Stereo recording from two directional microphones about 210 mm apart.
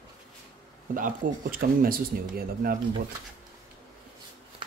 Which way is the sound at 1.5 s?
45° right (ahead or behind).